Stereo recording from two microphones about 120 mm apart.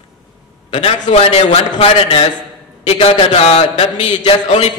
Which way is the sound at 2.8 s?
70° left (ahead or behind).